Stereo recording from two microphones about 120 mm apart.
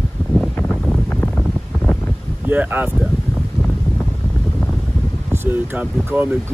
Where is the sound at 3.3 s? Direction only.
Centre (ahead or behind).